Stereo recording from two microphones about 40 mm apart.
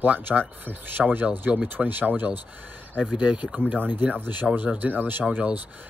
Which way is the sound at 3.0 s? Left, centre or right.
Right.